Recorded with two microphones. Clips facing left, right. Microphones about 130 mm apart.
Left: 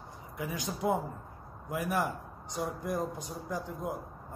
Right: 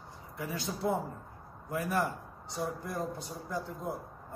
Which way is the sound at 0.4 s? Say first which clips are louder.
Left 1 dB; 15° left (ahead or behind).